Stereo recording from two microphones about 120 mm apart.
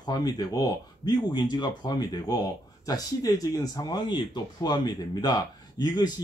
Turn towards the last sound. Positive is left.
turn(degrees=35)  # may be behind; listen again after turning